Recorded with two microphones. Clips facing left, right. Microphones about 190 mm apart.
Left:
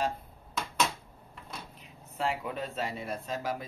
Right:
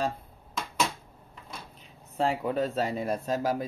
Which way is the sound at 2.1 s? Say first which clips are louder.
Right 6 dB; 35° right (ahead or behind).